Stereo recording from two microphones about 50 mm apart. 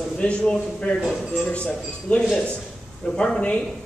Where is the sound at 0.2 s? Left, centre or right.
Centre.